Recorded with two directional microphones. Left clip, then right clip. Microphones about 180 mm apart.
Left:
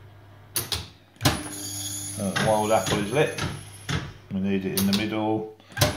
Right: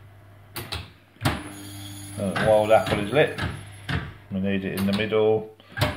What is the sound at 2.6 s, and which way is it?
Speech, 25° right (ahead or behind).